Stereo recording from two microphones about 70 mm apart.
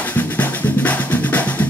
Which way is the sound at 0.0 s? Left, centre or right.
Left.